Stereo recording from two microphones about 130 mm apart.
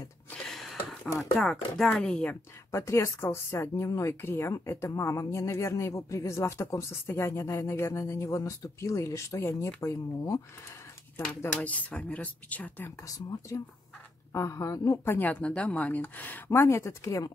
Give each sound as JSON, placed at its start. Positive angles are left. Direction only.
{"t": 0.3, "sound": "a sound", "side_deg": 0}
{"t": 1.8, "sound": "a woman's voice", "side_deg": 5}
{"t": 2.7, "sound": "speech", "side_deg": 20}
{"t": 11.1, "sound": "a woman's voice", "side_deg": 10}
{"t": 13.0, "sound": "speech", "side_deg": 25}